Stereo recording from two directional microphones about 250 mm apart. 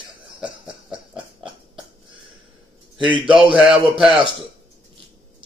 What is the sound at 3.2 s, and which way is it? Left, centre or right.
Speech, centre.